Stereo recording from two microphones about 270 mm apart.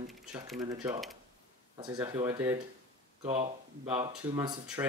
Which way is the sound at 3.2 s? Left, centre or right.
Right.